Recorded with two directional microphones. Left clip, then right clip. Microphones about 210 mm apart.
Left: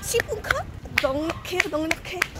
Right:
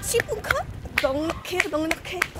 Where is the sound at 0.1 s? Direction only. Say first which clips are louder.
Even; 5° right (ahead or behind).